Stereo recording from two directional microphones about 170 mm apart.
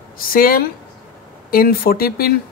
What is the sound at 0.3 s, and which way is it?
A woman's voice, 60° left (ahead or behind).